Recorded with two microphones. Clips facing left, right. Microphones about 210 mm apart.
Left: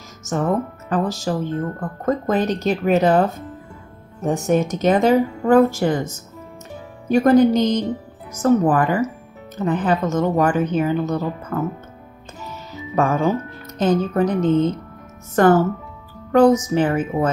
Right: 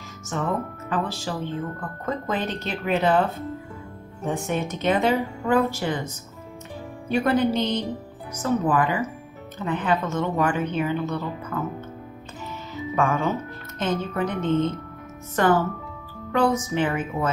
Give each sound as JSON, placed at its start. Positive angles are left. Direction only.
{"t": 0.3, "sound": "speech", "side_deg": 40}
{"t": 12.9, "sound": "speech", "side_deg": 40}